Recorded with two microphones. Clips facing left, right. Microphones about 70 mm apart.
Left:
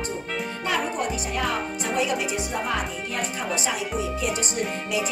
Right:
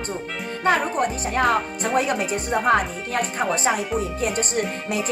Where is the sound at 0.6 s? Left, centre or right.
Right.